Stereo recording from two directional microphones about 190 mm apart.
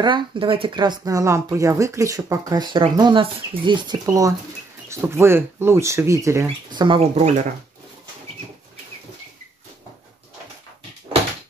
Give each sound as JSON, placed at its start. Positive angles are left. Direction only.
{"t": 0.0, "sound": "speech", "side_deg": -25}